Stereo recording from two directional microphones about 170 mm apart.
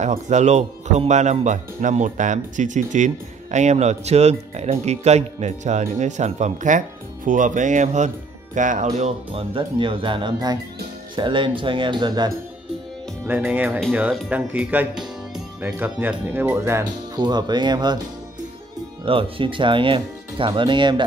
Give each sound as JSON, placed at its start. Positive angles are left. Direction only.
{"t": 0.0, "sound": "speech", "side_deg": -45}
{"t": 13.2, "sound": "speech", "side_deg": -15}
{"t": 19.0, "sound": "speech", "side_deg": -30}